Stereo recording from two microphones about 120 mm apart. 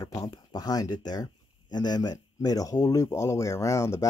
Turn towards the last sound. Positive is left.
turn(degrees=25)  # may be behind; listen again after turning